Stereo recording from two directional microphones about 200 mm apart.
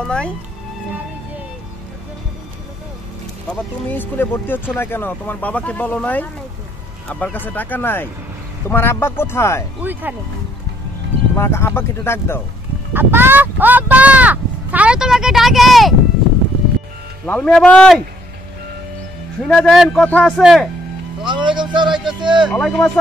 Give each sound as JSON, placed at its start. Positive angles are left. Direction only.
{"t": 0.0, "sound": "a man's voice", "side_deg": 5}
{"t": 3.4, "sound": "speech", "side_deg": 10}
{"t": 9.8, "sound": "speech", "side_deg": -10}
{"t": 11.3, "sound": "speech", "side_deg": 10}
{"t": 12.9, "sound": "speech", "side_deg": -10}
{"t": 17.3, "sound": "a man's voice", "side_deg": 5}
{"t": 19.4, "sound": "a man's voice", "side_deg": 5}
{"t": 21.2, "sound": "speech", "side_deg": -25}
{"t": 22.5, "sound": "speech", "side_deg": 5}